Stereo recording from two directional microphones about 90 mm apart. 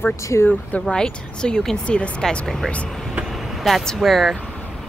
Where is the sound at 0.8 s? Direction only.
10° left (ahead or behind).